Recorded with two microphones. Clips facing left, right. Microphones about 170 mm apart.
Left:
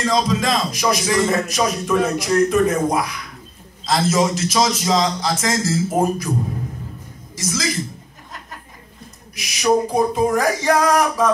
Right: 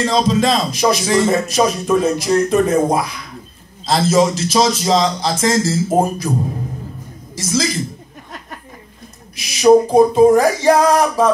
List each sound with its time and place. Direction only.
0.0 s music: 30° right (ahead or behind)
7.4 s music: 30° right (ahead or behind)
9.3 s music: 30° right (ahead or behind)